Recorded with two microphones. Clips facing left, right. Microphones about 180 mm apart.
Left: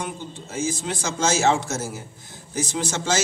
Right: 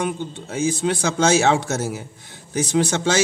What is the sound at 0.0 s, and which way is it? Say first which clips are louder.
A man's voice: right 7 dB; 65° right (ahead or behind).